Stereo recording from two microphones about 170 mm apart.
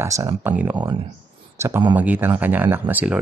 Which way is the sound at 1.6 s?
15° right (ahead or behind).